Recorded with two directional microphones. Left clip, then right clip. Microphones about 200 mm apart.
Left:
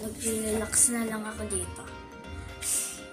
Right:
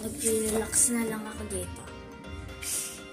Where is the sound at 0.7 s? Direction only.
10° left (ahead or behind).